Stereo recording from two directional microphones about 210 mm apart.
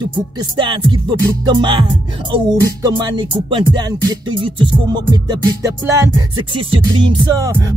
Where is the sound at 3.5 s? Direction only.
20° right (ahead or behind).